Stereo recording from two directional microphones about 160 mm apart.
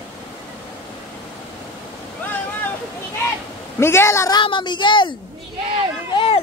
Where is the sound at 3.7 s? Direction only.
15° left (ahead or behind).